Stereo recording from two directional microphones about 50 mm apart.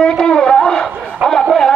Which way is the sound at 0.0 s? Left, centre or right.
Centre.